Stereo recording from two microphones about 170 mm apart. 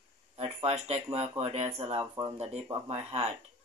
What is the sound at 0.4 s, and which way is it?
Speech, 40° right (ahead or behind).